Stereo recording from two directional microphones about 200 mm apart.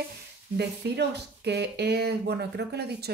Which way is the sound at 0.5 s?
55° right (ahead or behind).